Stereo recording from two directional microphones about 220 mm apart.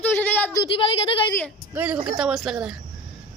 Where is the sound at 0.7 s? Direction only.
25° left (ahead or behind).